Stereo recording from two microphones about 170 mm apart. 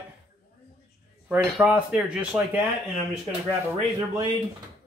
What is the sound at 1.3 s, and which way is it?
A man's voice, 10° right (ahead or behind).